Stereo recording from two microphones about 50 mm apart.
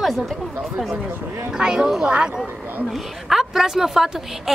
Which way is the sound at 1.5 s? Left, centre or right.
Centre.